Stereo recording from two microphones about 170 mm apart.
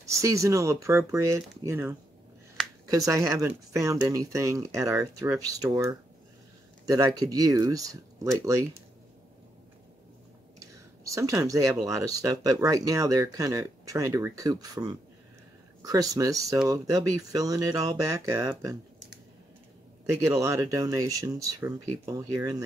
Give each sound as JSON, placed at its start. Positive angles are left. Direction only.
{"t": 0.0, "sound": "speech", "side_deg": -20}
{"t": 11.1, "sound": "speech", "side_deg": -20}
{"t": 20.2, "sound": "speech", "side_deg": -20}